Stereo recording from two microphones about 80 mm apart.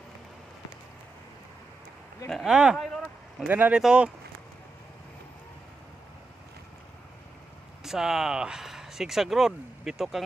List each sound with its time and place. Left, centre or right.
2.4 s speech: centre
2.8 s a sound: centre
3.4 s speech: right
3.7 s speech: centre
7.8 s speech: centre